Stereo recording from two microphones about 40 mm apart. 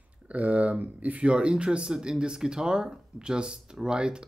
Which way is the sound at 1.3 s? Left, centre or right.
Right.